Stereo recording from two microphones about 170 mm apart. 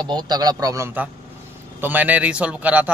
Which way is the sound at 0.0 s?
25° right (ahead or behind).